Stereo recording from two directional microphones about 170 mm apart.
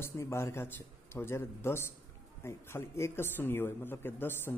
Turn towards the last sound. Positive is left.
turn(degrees=10)  # may be behind; listen again after turning